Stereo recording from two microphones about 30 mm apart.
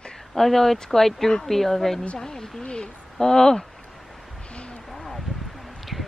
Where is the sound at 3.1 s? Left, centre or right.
Centre.